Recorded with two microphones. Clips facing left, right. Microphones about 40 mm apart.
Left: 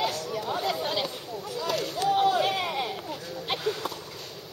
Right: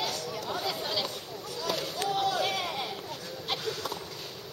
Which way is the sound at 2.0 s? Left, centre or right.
Left.